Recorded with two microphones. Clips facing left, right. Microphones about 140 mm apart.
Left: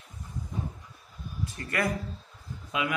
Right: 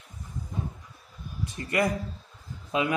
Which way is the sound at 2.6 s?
30° right (ahead or behind).